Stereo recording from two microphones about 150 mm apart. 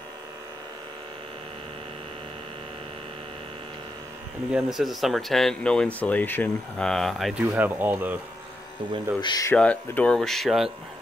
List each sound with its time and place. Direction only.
4.5 s speech: 5° right (ahead or behind)
7.5 s speech: 15° right (ahead or behind)
9.2 s speech: 25° left (ahead or behind)
9.5 s speech: 10° left (ahead or behind)